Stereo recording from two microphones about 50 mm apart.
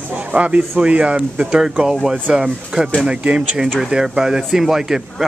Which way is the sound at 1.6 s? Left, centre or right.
Centre.